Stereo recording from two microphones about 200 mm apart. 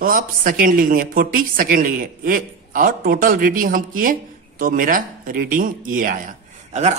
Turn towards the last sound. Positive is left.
turn(degrees=-40)  # may be behind; listen again after turning